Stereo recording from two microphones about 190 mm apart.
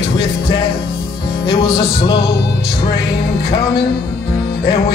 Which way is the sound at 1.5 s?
30° left (ahead or behind).